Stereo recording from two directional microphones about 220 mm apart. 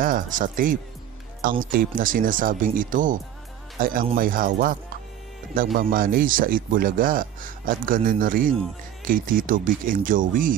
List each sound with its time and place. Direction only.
0.0 s speech: 40° right (ahead or behind)
5.8 s speech: 40° right (ahead or behind)